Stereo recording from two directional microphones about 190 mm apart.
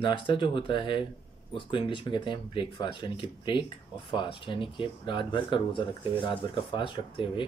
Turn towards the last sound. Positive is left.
turn(degrees=25)  # may be behind; listen again after turning